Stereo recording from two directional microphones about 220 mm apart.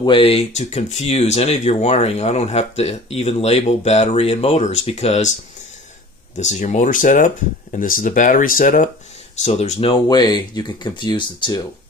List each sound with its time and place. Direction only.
0.0 s speech: 25° left (ahead or behind)
6.3 s speech: 30° left (ahead or behind)